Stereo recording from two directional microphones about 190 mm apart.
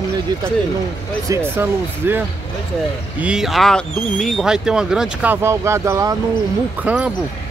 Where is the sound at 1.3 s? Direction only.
10° right (ahead or behind).